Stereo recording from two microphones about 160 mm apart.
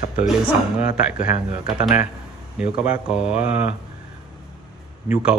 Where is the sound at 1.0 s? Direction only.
5° right (ahead or behind).